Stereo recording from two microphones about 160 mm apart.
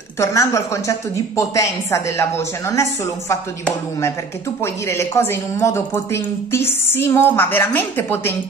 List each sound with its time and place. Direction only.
0.2 s a woman's voice: 20° left (ahead or behind)
4.8 s a woman's voice: 15° left (ahead or behind)